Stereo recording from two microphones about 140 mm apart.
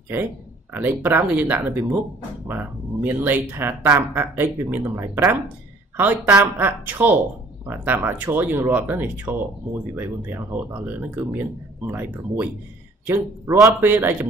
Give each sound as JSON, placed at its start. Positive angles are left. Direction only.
{"t": 0.7, "sound": "speech", "side_deg": -15}